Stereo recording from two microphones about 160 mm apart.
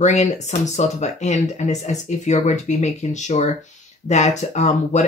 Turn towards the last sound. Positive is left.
turn(degrees=45)  # may be behind; listen again after turning